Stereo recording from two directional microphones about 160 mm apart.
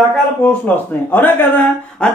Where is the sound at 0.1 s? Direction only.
5° left (ahead or behind).